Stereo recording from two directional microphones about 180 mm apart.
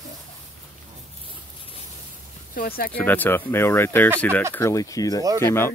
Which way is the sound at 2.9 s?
10° left (ahead or behind).